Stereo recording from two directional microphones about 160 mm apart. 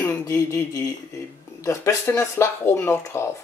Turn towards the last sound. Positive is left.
turn(degrees=15)  # may be behind; listen again after turning